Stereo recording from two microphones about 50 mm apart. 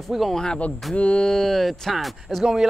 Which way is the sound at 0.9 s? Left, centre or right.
Left.